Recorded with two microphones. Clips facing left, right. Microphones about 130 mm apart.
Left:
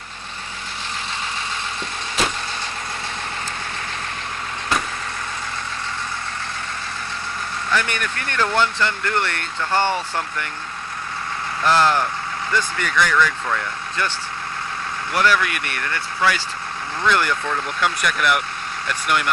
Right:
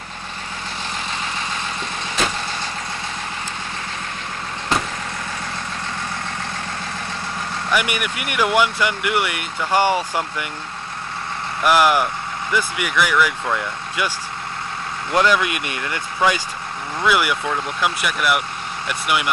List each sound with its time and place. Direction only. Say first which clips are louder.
7.7 s speech: right 2 dB; 10° right (ahead or behind)
11.6 s speech: right 2 dB; 10° right (ahead or behind)
15.1 s speech: right 2 dB; 20° right (ahead or behind)